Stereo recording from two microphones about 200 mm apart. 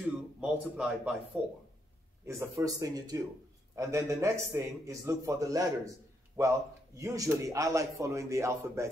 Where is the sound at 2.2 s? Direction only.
15° right (ahead or behind).